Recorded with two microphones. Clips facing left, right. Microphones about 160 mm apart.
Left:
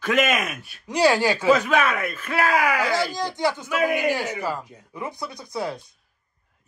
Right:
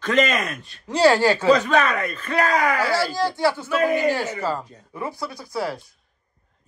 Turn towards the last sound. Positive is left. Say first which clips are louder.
# right 2 dB
turn(degrees=20)  # may be behind; listen again after turning